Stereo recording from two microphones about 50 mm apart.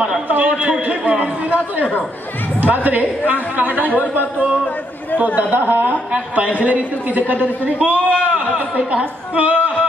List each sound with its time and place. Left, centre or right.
0.3 s chatter: right
2.6 s speech: right
3.9 s speech: left
5.5 s speech: right
6.1 s a woman's voice: right